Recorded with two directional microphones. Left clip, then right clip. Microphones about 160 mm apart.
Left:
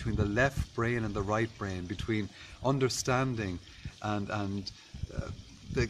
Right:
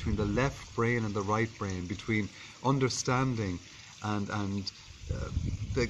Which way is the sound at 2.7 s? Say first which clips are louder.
Left 2 dB; 55° left (ahead or behind).